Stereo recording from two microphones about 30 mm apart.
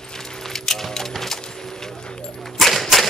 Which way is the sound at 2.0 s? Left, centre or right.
Left.